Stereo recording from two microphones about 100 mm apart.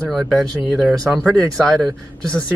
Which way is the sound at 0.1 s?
5° left (ahead or behind).